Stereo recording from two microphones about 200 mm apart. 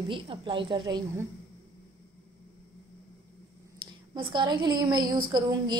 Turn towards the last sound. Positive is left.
turn(degrees=-20)  # may be behind; listen again after turning